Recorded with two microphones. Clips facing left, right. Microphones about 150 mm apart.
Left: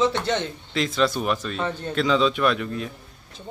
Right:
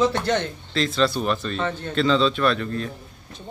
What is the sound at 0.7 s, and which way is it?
Speech, 15° left (ahead or behind).